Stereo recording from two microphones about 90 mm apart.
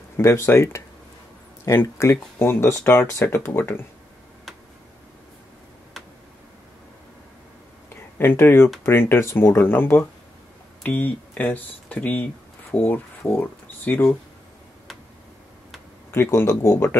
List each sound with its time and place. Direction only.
0.2 s speech: 30° left (ahead or behind)
7.9 s a sound: 25° left (ahead or behind)
8.8 s speech: 25° left (ahead or behind)
16.1 s speech: 30° left (ahead or behind)